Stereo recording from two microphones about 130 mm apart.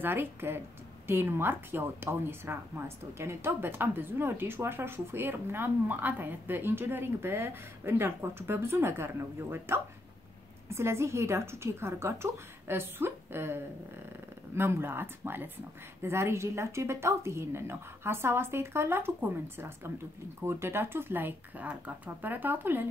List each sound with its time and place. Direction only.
0.0 s speech: 15° right (ahead or behind)